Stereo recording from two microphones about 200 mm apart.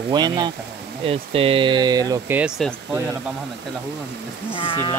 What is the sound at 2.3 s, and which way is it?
Speech, 5° right (ahead or behind).